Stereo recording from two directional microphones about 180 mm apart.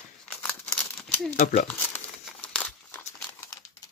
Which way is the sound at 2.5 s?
10° left (ahead or behind).